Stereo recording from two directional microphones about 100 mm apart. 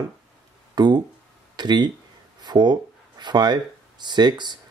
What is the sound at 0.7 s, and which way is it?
Speech, 45° right (ahead or behind).